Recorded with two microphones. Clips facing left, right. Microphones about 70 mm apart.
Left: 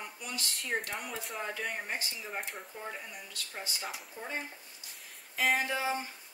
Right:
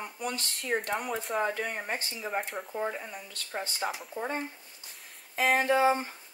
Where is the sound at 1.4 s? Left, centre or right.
Right.